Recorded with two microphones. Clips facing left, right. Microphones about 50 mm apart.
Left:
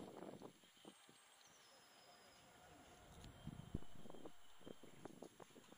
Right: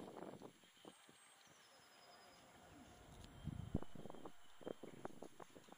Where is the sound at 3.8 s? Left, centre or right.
Right.